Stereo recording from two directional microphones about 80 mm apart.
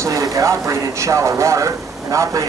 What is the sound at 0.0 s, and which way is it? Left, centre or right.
A man's voice, right.